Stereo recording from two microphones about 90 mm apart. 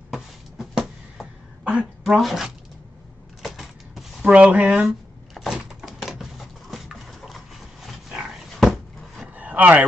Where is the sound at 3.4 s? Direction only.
5° right (ahead or behind).